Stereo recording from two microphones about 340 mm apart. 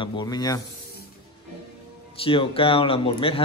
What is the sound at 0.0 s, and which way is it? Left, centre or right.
Speech, centre.